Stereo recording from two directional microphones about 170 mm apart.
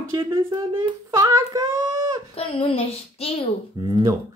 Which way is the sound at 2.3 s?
35° left (ahead or behind).